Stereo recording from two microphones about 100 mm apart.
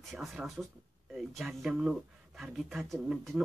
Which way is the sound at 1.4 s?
5° right (ahead or behind).